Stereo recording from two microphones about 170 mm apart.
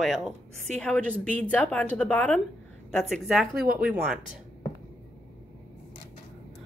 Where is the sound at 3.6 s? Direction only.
60° right (ahead or behind).